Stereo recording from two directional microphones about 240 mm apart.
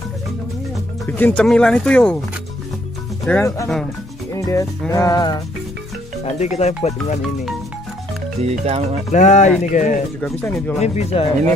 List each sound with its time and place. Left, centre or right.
1.0 s speech: centre
3.3 s music: centre
6.4 s speech: left
8.4 s speech: right
9.1 s speech: left
10.2 s speech: centre
10.8 s speech: left